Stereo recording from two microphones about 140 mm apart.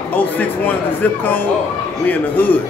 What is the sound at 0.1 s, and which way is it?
Speech, 10° left (ahead or behind).